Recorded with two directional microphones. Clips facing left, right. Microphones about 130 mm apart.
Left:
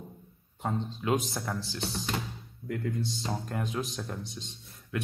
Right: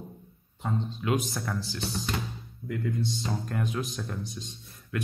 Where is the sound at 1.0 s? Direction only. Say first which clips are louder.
Even; 25° left (ahead or behind).